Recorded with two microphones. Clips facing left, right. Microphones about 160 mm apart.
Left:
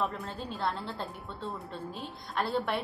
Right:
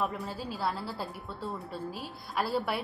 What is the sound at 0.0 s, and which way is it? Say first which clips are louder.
A woman's voice: right 1 dB; 5° right (ahead or behind).